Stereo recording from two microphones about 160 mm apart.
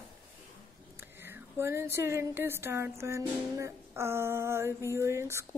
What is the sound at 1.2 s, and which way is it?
A woman's voice, 15° right (ahead or behind).